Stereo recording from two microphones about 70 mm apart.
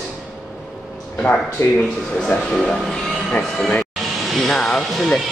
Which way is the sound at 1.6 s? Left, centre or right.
Left.